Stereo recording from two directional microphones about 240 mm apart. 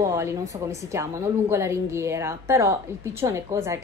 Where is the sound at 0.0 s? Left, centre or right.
Centre.